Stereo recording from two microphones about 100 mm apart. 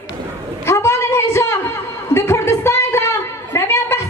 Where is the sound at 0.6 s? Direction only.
25° left (ahead or behind).